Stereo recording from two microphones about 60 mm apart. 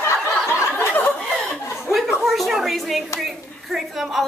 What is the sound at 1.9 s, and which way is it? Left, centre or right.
A woman's voice, centre.